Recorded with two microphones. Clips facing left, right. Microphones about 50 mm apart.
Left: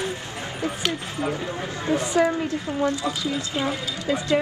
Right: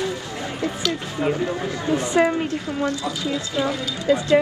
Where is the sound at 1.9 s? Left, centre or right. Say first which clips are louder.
Right 2 dB; right.